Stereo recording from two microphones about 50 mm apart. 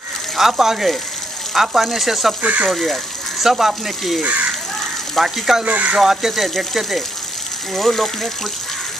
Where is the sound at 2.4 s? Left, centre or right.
Right.